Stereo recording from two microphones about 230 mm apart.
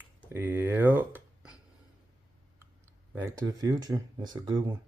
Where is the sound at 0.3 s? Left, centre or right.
Centre.